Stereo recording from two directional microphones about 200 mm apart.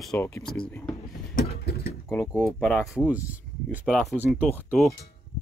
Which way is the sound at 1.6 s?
50° left (ahead or behind).